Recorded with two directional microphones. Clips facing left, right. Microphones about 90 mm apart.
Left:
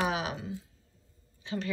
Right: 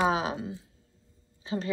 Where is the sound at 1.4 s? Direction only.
35° right (ahead or behind).